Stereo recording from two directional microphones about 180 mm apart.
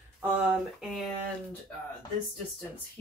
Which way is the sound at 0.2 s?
5° right (ahead or behind).